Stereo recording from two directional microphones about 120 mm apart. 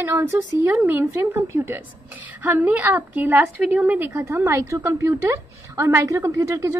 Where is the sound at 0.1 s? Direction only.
25° right (ahead or behind).